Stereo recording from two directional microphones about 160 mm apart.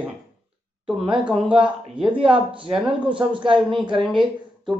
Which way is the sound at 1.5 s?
35° right (ahead or behind).